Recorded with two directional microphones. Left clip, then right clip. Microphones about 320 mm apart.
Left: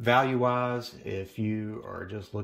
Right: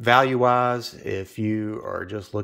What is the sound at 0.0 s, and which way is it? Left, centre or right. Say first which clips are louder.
Speech: right 6 dB; centre.